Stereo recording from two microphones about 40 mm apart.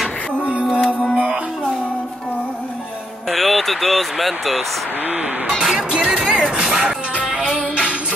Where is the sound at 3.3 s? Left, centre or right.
Centre.